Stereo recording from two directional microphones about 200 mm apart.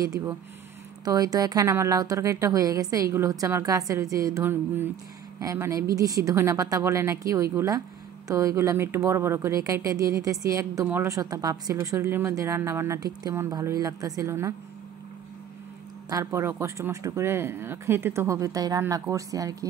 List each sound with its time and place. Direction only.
0.0 s speech: 15° right (ahead or behind)
16.1 s speech: 15° right (ahead or behind)